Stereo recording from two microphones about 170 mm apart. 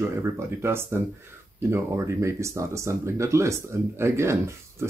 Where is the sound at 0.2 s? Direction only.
15° right (ahead or behind).